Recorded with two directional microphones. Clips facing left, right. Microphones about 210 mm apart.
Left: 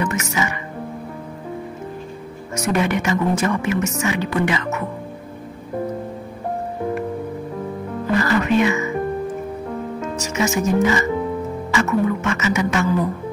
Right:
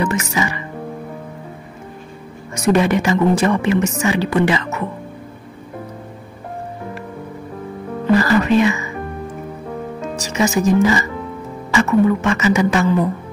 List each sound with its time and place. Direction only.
0.0 s a woman's voice: 30° right (ahead or behind)
2.5 s a woman's voice: 30° right (ahead or behind)
8.2 s music: 35° right (ahead or behind)
10.0 s music: 35° right (ahead or behind)
11.7 s a woman's voice: 35° right (ahead or behind)